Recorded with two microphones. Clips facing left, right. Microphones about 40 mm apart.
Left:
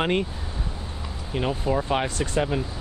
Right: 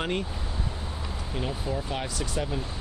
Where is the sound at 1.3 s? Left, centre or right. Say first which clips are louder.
Left 7 dB; left.